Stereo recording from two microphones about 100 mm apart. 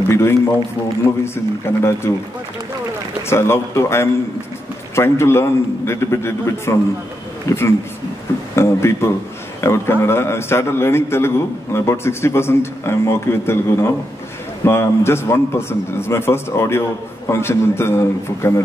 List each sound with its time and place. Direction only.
0.1 s a man's voice: 25° left (ahead or behind)
3.3 s a man's voice: 25° left (ahead or behind)